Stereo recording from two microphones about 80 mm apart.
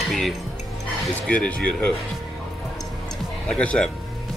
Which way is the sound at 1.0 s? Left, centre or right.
Centre.